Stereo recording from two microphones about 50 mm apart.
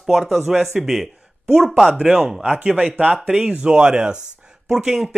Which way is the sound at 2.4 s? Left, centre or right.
Right.